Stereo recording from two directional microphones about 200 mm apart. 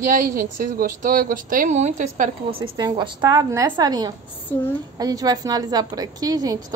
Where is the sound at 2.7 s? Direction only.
25° right (ahead or behind).